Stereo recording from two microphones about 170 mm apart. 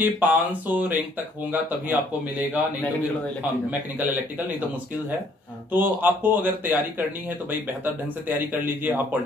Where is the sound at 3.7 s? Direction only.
10° right (ahead or behind).